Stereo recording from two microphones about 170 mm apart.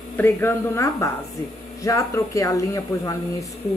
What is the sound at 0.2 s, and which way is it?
A woman's voice, 15° left (ahead or behind).